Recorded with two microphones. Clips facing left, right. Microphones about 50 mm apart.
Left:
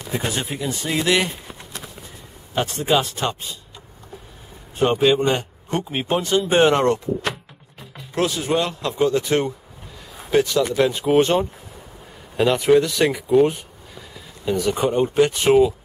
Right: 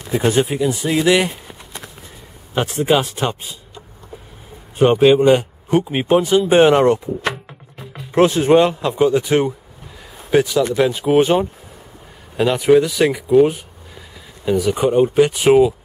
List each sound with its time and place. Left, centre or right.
0.2 s speech: centre
0.5 s speech: centre
2.5 s speech: centre
4.7 s speech: centre
8.1 s speech: right
8.8 s speech: centre